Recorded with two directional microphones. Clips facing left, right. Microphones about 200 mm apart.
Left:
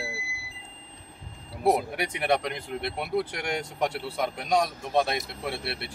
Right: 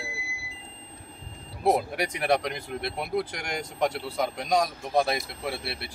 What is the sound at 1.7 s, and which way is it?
Speech, centre (ahead or behind).